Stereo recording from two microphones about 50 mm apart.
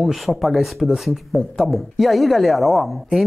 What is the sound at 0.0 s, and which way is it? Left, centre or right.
Speech, centre.